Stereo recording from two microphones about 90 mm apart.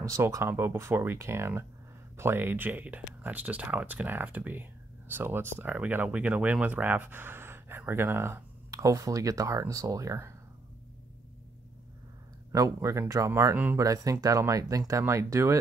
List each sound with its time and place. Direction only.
0.2 s speech: 30° right (ahead or behind)
8.7 s speech: 40° right (ahead or behind)
12.5 s speech: 35° right (ahead or behind)